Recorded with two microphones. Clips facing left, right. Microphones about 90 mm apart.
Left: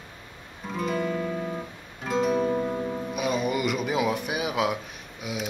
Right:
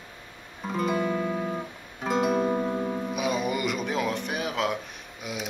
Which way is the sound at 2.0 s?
5° right (ahead or behind).